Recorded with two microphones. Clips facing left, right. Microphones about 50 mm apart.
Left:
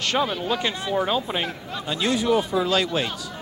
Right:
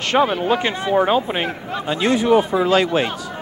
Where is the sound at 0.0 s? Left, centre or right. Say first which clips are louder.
Right 6 dB; right.